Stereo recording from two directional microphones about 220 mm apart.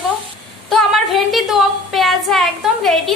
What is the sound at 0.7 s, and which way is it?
A woman's voice, centre (ahead or behind).